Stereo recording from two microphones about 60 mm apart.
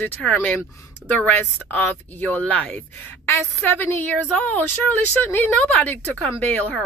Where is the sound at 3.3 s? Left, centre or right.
Left.